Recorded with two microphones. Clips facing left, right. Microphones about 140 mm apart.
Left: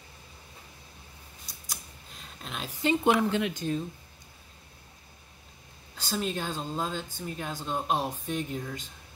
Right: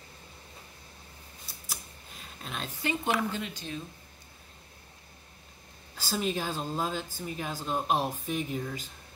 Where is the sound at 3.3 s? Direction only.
70° left (ahead or behind).